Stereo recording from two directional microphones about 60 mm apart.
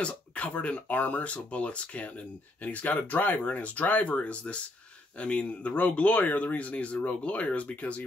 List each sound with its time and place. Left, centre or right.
0.0 s speech: left